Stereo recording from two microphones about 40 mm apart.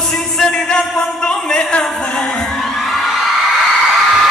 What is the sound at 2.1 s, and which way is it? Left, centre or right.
Music, left.